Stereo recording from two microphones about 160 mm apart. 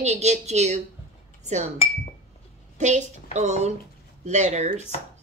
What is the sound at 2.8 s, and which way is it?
Speech, 45° right (ahead or behind).